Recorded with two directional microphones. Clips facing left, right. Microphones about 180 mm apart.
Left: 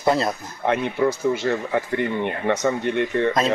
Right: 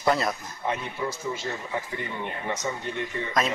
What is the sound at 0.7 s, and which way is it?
Speech, 70° left (ahead or behind).